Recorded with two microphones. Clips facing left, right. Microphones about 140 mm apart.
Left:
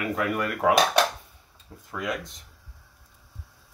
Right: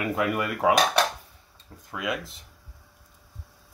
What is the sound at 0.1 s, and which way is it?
Speech, 5° right (ahead or behind).